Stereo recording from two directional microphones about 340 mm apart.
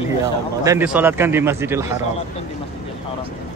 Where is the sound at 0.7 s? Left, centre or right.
Centre.